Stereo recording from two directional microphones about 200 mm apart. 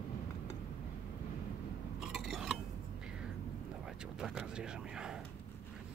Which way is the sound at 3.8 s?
5° right (ahead or behind).